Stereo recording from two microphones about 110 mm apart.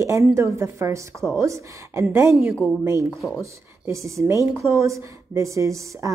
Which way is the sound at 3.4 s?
25° right (ahead or behind).